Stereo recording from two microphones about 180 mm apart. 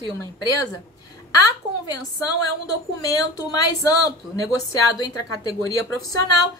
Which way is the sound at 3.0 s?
20° left (ahead or behind).